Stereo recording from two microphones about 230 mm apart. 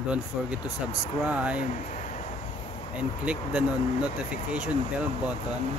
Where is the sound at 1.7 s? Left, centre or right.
Left.